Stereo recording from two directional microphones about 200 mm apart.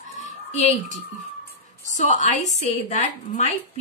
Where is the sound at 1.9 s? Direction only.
35° left (ahead or behind).